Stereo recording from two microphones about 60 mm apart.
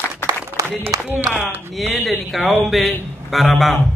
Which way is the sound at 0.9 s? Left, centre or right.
Right.